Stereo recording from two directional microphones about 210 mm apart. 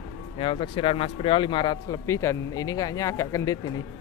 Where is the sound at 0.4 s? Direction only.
25° left (ahead or behind).